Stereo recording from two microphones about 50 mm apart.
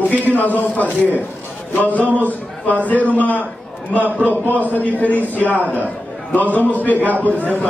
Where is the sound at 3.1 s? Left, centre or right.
Left.